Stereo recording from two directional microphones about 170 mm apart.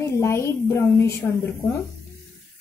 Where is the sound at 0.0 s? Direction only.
15° left (ahead or behind).